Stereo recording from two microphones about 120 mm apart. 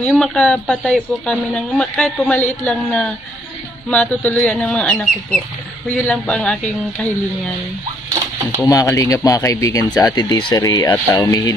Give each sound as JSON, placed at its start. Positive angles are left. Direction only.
{"t": 0.0, "sound": "speech", "side_deg": 5}
{"t": 2.3, "sound": "speech", "side_deg": 15}
{"t": 8.5, "sound": "speech", "side_deg": 30}